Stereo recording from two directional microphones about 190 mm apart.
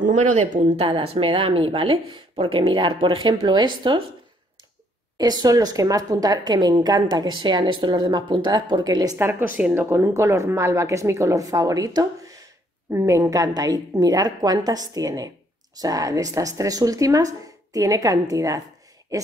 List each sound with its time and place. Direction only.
0.0 s speech: 40° right (ahead or behind); by 4.0 s 25° right (ahead or behind)
5.1 s speech: 20° right (ahead or behind)